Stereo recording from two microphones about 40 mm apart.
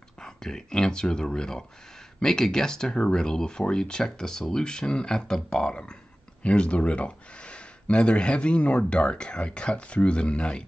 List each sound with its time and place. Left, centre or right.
0.2 s speech: centre